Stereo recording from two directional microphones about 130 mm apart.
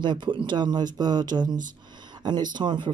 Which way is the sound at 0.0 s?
35° right (ahead or behind).